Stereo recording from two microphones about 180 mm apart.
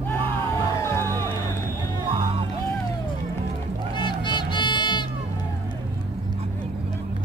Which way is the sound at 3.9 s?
25° left (ahead or behind).